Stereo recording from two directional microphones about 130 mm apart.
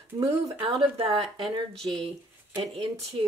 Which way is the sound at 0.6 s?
45° right (ahead or behind).